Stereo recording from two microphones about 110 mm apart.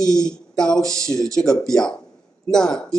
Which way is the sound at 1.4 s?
5° left (ahead or behind).